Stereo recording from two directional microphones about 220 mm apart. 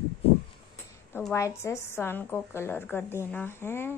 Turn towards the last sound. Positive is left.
turn(degrees=10)  # may be behind; listen again after turning